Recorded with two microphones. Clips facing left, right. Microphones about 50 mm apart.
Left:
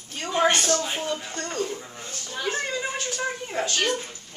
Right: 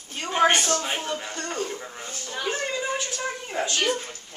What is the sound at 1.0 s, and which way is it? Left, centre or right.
Speech, centre.